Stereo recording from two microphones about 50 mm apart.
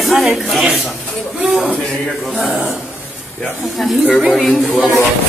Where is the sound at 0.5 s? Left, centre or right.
Centre.